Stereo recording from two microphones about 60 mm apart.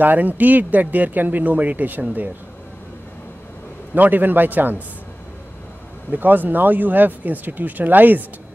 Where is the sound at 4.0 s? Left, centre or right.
Right.